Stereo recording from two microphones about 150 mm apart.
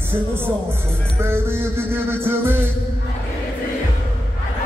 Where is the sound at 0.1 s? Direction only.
15° right (ahead or behind).